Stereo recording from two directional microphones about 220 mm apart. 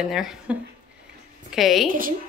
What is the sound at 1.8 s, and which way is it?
Speech, 40° right (ahead or behind).